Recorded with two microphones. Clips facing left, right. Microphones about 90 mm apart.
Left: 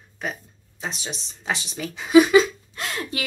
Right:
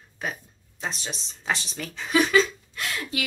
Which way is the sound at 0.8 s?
5° left (ahead or behind).